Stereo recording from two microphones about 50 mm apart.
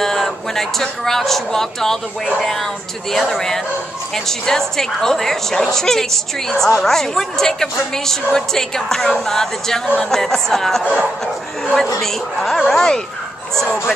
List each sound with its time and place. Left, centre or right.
0.0 s a woman's voice: centre
10.8 s a sound: right
12.0 s speech: centre